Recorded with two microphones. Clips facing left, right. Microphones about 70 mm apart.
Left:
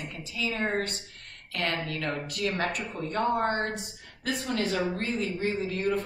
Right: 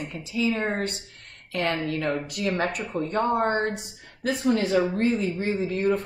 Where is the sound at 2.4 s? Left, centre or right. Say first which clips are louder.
Right 3 dB; centre.